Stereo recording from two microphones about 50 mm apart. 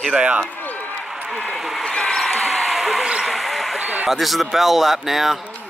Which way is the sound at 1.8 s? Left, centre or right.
Centre.